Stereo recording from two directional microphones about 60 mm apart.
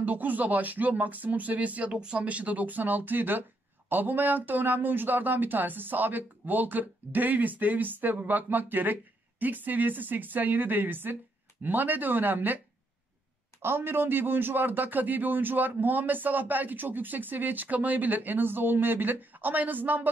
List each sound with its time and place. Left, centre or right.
0.0 s speech: right
13.6 s speech: right